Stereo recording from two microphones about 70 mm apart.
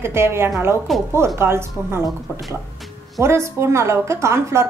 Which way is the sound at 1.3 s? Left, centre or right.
Right.